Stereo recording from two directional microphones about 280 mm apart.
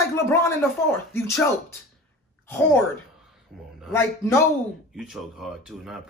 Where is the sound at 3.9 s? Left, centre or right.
Centre.